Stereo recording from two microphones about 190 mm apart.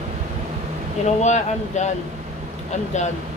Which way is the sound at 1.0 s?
40° left (ahead or behind).